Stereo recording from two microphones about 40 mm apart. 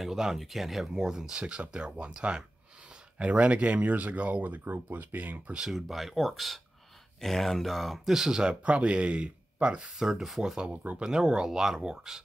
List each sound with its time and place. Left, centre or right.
0.0 s speech: centre
1.4 s speech: right
4.6 s speech: right
5.7 s speech: centre
8.1 s speech: centre
8.6 s speech: right
9.9 s speech: centre
10.7 s speech: right
11.1 s speech: centre